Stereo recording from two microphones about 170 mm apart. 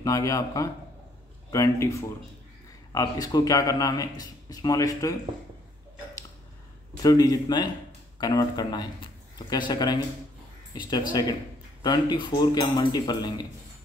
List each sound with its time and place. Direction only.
0.0 s speech: 20° left (ahead or behind)
7.0 s a man's voice: 20° left (ahead or behind)